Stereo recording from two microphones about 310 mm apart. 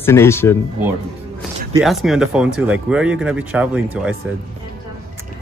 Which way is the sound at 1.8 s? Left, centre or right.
Centre.